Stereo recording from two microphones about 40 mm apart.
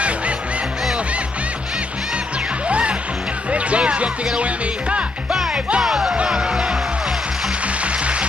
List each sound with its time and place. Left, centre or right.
2.7 s music: right
5.3 s music: centre
7.6 s music: right